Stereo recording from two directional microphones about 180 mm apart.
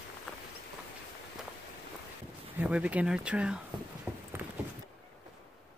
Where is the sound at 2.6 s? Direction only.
5° right (ahead or behind).